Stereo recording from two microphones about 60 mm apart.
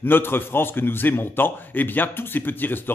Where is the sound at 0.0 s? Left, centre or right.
Left.